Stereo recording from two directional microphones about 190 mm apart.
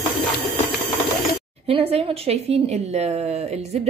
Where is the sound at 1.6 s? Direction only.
30° right (ahead or behind).